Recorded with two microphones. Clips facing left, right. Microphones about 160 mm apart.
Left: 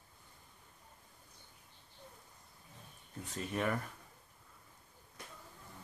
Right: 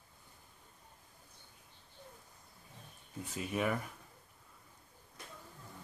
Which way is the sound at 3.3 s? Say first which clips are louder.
Right 1 dB; 5° right (ahead or behind).